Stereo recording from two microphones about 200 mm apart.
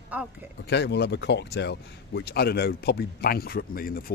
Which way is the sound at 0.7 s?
60° left (ahead or behind).